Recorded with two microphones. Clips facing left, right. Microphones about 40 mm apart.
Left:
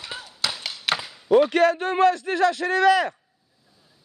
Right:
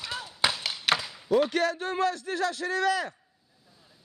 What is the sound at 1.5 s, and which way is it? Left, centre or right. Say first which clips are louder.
Speech: left 8 dB; left.